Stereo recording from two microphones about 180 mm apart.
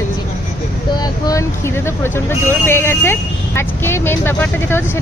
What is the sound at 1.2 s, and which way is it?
Speech, 15° left (ahead or behind).